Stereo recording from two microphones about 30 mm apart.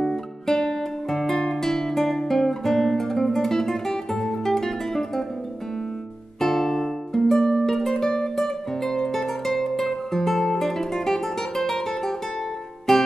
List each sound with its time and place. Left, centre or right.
0.0 s music: centre
6.4 s music: centre
7.3 s music: left; by 13.0 s centre